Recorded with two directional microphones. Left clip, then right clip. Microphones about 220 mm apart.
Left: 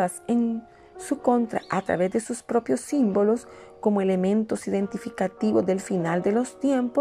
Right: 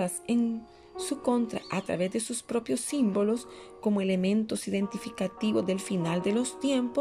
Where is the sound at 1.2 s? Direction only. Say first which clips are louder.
Left 7 dB; centre (ahead or behind).